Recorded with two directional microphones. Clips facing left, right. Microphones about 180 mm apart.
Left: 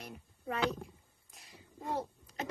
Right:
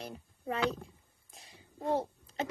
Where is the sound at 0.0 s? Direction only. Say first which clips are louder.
Right 3 dB; 30° right (ahead or behind).